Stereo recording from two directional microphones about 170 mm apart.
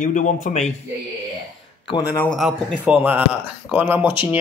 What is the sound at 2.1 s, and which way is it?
Speech, 5° left (ahead or behind).